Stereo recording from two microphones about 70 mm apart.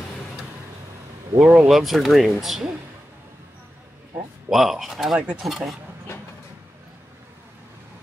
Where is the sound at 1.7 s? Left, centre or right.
Centre.